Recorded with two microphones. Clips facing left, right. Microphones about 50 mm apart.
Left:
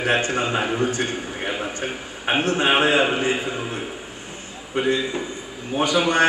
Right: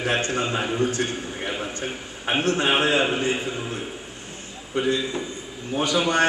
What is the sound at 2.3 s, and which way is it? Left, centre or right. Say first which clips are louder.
A man's voice: left 2 dB; left.